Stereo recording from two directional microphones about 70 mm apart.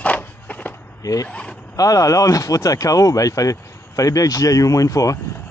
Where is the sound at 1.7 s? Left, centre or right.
Left.